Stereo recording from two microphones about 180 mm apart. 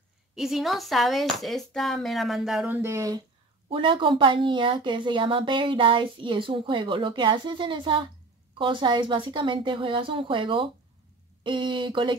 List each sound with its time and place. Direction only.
0.4 s speech: centre (ahead or behind)
3.7 s a woman's voice: 30° right (ahead or behind)